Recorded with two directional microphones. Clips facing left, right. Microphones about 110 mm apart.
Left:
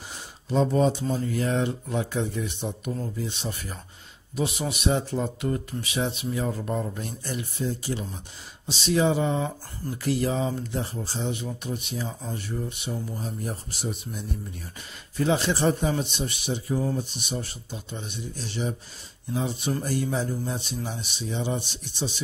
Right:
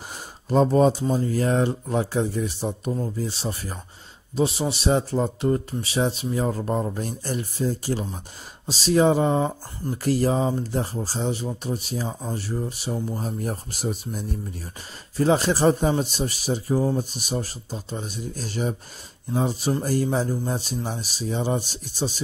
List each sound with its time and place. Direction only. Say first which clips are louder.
0.1 s a sound: right 5 dB; 45° right (ahead or behind)
0.7 s speech: right 4 dB; 40° right (ahead or behind)
13.2 s speech: right 4 dB; 45° right (ahead or behind)